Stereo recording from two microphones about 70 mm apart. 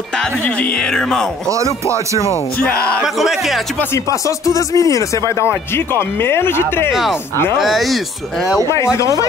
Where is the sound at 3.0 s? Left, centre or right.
Centre.